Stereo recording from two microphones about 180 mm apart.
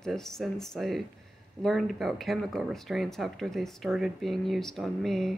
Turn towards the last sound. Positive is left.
turn(degrees=0)  # may be behind; listen again after turning